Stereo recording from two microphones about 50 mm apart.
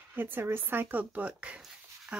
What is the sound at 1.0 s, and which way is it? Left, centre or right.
Speech, right.